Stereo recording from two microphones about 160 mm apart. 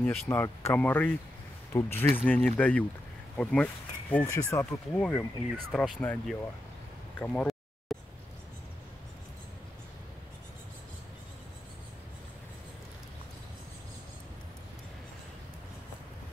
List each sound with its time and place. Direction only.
0.0 s speech: 15° left (ahead or behind)
5.7 s speech: 5° left (ahead or behind)
7.2 s a sound: 10° left (ahead or behind)